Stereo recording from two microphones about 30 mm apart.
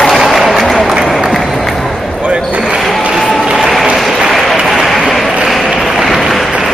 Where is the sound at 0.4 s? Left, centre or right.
Centre.